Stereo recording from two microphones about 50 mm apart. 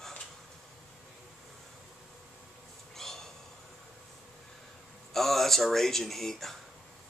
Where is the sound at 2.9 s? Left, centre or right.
Centre.